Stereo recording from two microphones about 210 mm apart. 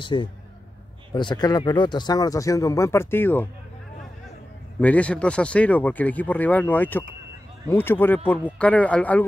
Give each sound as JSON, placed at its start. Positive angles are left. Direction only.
{"t": 0.0, "sound": "a man's voice", "side_deg": 20}
{"t": 4.7, "sound": "speech", "side_deg": 5}